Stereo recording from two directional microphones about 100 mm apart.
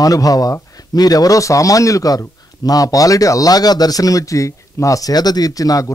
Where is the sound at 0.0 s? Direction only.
35° left (ahead or behind).